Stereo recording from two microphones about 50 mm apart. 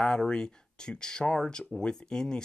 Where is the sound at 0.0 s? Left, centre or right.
Centre.